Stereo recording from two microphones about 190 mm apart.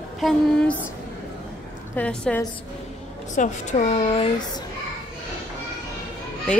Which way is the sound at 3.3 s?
40° left (ahead or behind).